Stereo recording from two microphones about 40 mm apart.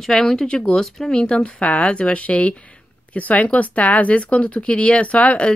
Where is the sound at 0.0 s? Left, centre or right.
Centre.